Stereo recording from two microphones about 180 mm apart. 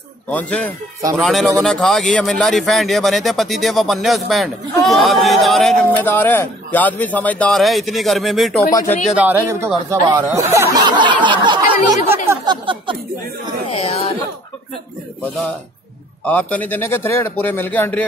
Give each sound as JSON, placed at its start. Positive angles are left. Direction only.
{"t": 0.3, "sound": "speech", "side_deg": 5}
{"t": 8.7, "sound": "speech", "side_deg": 10}
{"t": 9.1, "sound": "speech", "side_deg": -10}
{"t": 13.7, "sound": "speech", "side_deg": 35}
{"t": 16.3, "sound": "speech", "side_deg": 10}